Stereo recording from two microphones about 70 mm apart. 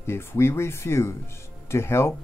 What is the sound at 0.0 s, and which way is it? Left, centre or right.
Speech, left.